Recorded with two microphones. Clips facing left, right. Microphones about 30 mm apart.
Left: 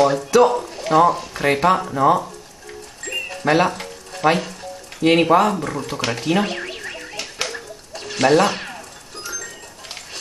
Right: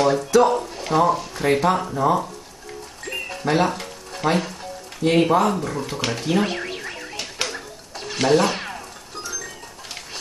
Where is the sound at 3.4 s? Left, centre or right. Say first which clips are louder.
Left 3 dB; left.